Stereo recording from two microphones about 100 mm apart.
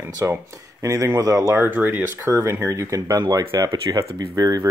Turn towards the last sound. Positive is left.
turn(degrees=-40)  # may be behind; listen again after turning